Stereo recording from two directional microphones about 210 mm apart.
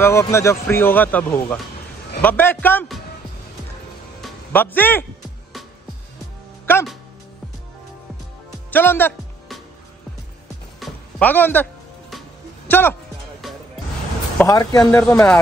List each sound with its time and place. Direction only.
0.0 s speech: 15° left (ahead or behind)
4.2 s music: 10° left (ahead or behind)
6.6 s music: 10° left (ahead or behind)
8.6 s music: 10° left (ahead or behind)
10.8 s music: 5° left (ahead or behind)
12.6 s speech: 10° left (ahead or behind)
14.4 s speech: 15° left (ahead or behind)